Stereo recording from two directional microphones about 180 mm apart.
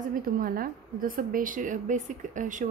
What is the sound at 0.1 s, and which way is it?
A woman's voice, 50° right (ahead or behind).